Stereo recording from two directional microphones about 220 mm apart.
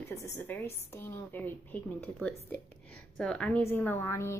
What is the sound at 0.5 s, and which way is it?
A woman's voice, 10° left (ahead or behind).